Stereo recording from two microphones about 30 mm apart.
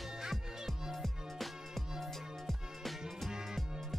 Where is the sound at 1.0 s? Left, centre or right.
Centre.